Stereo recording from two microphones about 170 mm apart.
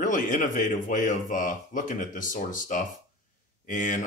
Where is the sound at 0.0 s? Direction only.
50° left (ahead or behind).